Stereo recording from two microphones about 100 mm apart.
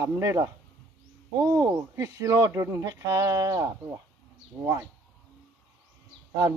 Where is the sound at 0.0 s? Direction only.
30° right (ahead or behind).